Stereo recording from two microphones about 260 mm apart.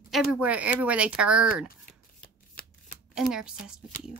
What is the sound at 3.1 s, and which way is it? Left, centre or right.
Speech, centre.